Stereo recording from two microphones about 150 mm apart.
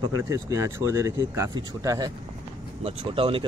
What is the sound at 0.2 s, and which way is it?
Speech, 20° right (ahead or behind).